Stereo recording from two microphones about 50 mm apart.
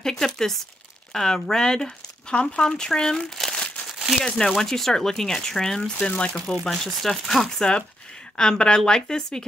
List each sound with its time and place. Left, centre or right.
0.0 s crumpling: centre
1.1 s speech: centre
6.4 s speech: centre